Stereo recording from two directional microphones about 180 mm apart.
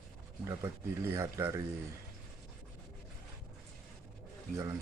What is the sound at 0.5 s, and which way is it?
Speech, 15° right (ahead or behind).